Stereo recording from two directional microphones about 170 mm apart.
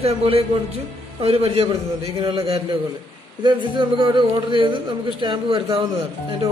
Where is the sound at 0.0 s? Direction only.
35° right (ahead or behind).